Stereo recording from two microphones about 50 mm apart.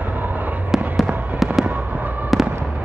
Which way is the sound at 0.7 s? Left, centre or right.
Centre.